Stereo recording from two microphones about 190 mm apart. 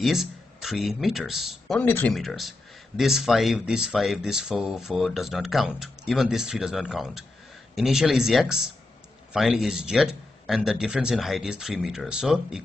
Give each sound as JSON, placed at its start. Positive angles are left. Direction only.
{"t": 0.0, "sound": "speech", "side_deg": 0}